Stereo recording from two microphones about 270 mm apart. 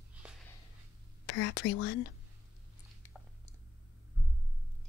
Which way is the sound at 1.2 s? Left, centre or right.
Left.